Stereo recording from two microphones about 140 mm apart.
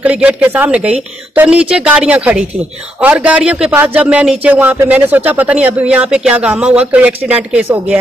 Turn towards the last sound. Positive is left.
turn(degrees=-10)  # may be behind; listen again after turning